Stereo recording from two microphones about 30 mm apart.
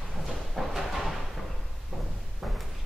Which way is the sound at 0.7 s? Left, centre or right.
Centre.